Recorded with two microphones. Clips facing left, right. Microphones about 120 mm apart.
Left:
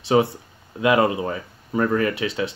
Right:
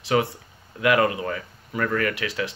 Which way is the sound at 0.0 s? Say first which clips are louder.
Left 4 dB; 25° left (ahead or behind).